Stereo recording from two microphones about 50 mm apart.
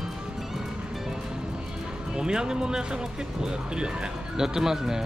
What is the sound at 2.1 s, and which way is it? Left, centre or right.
Speech, centre.